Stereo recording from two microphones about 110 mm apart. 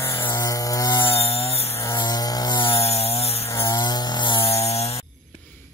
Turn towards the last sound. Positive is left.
turn(degrees=70)  # may be behind; listen again after turning